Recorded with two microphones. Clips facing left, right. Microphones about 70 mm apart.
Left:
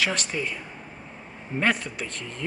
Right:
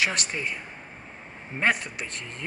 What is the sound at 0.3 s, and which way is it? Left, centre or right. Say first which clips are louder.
Speech: left 2 dB; centre.